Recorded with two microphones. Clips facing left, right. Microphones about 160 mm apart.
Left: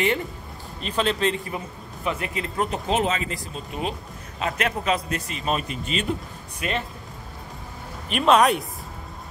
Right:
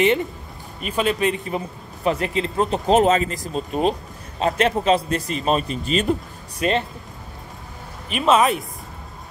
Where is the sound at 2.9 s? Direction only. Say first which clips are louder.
Right 9 dB; 40° right (ahead or behind).